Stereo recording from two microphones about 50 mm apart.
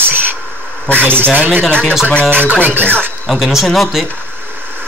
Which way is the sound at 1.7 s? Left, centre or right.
Left.